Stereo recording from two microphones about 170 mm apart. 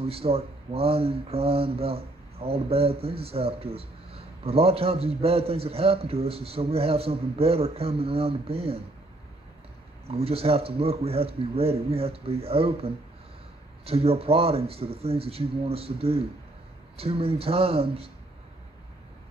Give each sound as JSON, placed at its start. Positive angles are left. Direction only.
{"t": 0.0, "sound": "speech", "side_deg": -35}
{"t": 10.0, "sound": "speech", "side_deg": -35}